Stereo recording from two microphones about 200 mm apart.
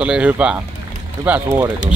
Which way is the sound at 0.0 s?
5° right (ahead or behind).